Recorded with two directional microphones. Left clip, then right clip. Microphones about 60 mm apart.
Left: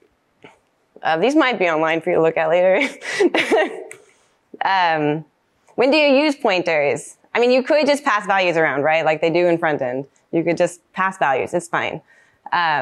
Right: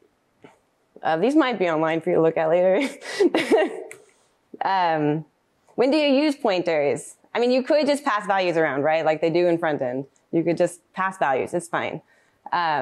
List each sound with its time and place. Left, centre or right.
0.4 s speech: right
4.0 s a sound: right
5.7 s a woman's voice: right